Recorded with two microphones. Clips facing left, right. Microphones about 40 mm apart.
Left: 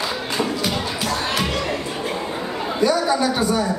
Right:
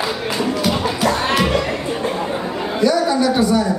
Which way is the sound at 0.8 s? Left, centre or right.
Right.